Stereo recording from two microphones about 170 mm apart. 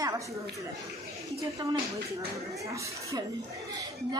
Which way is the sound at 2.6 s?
20° right (ahead or behind).